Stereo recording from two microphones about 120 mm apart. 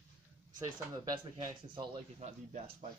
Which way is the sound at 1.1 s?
35° right (ahead or behind).